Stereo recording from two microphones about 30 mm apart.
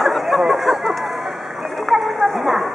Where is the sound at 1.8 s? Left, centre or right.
Centre.